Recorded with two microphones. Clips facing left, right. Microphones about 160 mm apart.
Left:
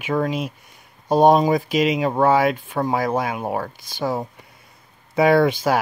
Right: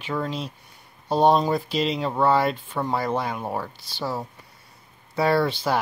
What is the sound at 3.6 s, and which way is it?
Speech, 45° left (ahead or behind).